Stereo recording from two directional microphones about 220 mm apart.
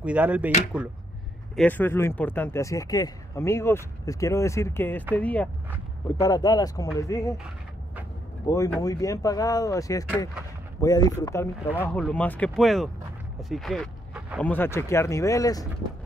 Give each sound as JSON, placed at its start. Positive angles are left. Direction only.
{"t": 0.0, "sound": "speech", "side_deg": -5}
{"t": 1.6, "sound": "speech", "side_deg": 10}
{"t": 6.2, "sound": "speech", "side_deg": 15}
{"t": 8.5, "sound": "speech", "side_deg": 15}
{"t": 14.4, "sound": "speech", "side_deg": 10}